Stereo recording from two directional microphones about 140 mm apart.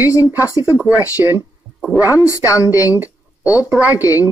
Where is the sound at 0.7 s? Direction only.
10° right (ahead or behind).